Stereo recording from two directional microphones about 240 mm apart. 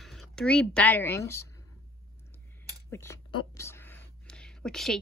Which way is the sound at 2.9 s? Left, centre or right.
Centre.